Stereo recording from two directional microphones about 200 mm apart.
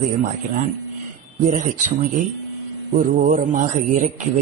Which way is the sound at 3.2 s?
40° right (ahead or behind).